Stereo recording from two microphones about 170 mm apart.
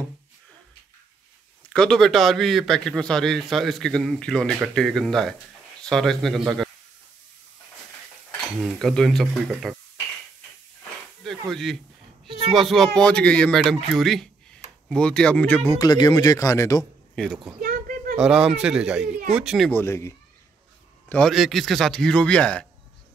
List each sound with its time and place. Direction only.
1.7 s a man's voice: 5° left (ahead or behind)
8.6 s a man's voice: centre (ahead or behind)
11.2 s a man's voice: centre (ahead or behind); by 16.8 s 20° left (ahead or behind)
17.1 s speech: 5° left (ahead or behind)
17.6 s a sound: 55° right (ahead or behind)
18.1 s a man's voice: 5° right (ahead or behind)
19.7 s speech: 15° left (ahead or behind)
21.1 s a man's voice: 5° left (ahead or behind)